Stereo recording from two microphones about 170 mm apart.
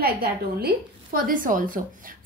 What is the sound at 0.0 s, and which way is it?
Speech, 65° right (ahead or behind).